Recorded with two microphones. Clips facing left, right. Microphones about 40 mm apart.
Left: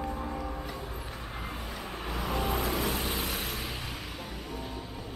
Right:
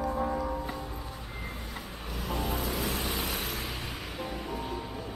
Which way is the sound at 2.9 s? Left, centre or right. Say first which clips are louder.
Even; centre.